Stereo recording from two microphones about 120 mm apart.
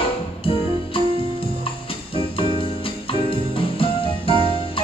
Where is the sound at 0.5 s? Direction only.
50° left (ahead or behind).